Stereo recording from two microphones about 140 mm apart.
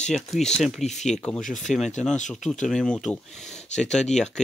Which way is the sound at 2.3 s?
5° left (ahead or behind).